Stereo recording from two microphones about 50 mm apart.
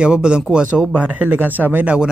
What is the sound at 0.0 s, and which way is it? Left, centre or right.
Speech, centre.